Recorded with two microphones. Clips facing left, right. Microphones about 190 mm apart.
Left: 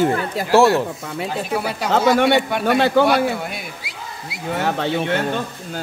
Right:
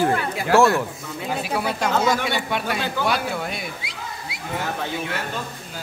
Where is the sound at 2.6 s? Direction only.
65° left (ahead or behind).